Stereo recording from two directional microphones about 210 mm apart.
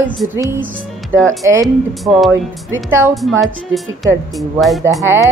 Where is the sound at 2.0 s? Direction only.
Centre (ahead or behind).